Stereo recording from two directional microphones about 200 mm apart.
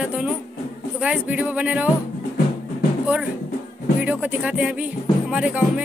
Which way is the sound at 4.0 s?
5° right (ahead or behind).